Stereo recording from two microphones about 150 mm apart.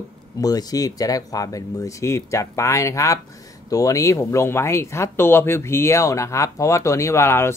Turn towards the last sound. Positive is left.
turn(degrees=15)  # may be behind; listen again after turning